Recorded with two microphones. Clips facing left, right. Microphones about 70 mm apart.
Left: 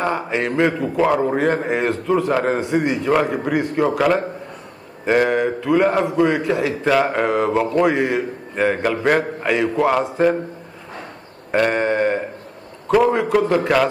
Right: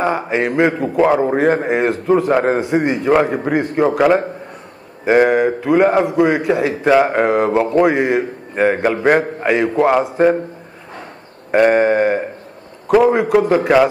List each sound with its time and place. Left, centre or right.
0.0 s a man's voice: centre
8.8 s a man's voice: centre
9.6 s a man's voice: centre
11.5 s a man's voice: centre